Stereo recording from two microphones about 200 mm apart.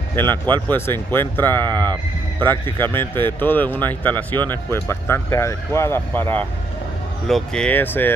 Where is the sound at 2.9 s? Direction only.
10° left (ahead or behind).